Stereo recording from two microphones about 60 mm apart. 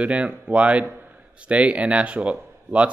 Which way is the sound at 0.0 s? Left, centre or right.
Right.